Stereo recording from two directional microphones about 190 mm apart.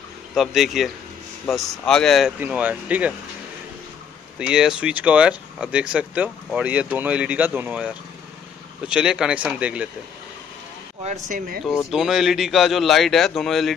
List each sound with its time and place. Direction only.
0.3 s a man's voice: centre (ahead or behind)
4.4 s a man's voice: 5° right (ahead or behind)
11.1 s speech: 40° right (ahead or behind)
11.9 s a man's voice: centre (ahead or behind)